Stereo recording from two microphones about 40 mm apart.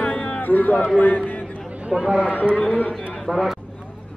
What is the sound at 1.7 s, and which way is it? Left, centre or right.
Chatter, right.